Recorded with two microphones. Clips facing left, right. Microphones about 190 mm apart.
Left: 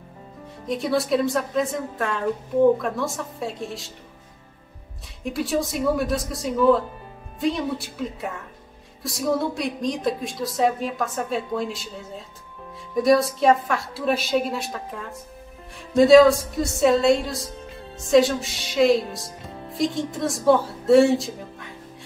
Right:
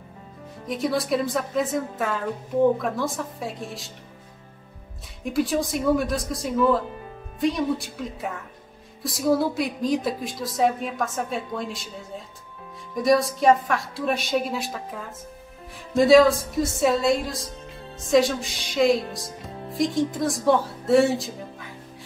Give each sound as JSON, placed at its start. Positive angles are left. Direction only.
{"t": 0.7, "sound": "speech", "side_deg": 0}
{"t": 5.2, "sound": "speech", "side_deg": 0}